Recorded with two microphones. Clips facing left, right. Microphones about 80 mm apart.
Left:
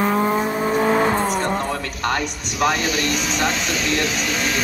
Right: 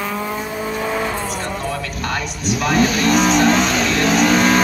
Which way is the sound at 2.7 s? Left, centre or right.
Right.